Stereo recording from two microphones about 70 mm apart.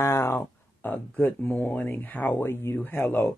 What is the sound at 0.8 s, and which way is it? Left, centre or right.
Speech, left.